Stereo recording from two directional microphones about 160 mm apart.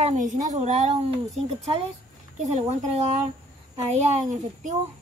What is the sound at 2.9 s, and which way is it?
Speech, 45° right (ahead or behind).